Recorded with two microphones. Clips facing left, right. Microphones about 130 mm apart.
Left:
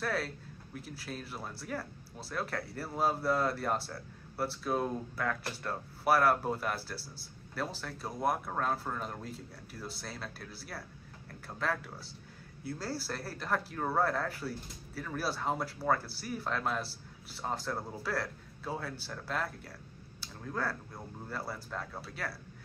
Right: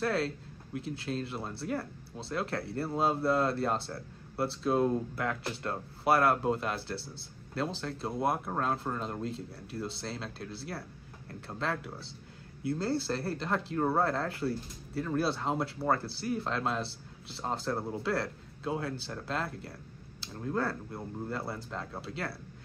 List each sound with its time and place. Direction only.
0.0 s speech: 25° right (ahead or behind)
21.3 s speech: 25° right (ahead or behind)